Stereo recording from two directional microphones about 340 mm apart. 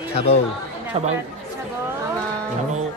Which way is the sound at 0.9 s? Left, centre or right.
Centre.